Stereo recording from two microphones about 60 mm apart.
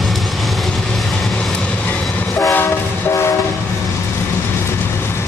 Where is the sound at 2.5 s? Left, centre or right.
Left.